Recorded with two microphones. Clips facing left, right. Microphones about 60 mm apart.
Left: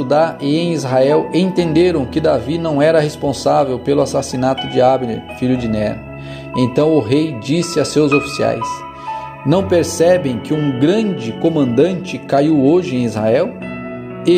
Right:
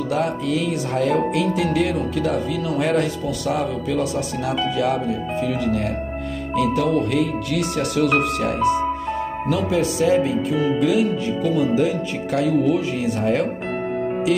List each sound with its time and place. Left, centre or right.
0.1 s speech: left
10.5 s speech: centre
10.8 s speech: left
12.5 s speech: left